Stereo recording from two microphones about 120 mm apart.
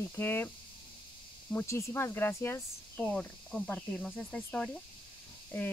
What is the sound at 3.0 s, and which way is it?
Speech, 5° left (ahead or behind).